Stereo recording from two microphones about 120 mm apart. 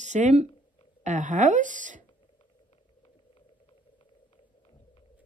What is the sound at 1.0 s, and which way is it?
A woman's voice, 90° right.